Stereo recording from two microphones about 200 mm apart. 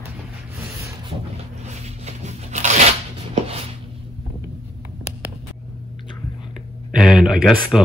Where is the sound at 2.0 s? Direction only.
35° right (ahead or behind).